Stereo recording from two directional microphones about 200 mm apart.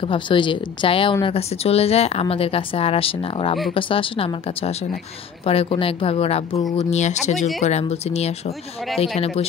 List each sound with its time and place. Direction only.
0.0 s speech: 25° left (ahead or behind)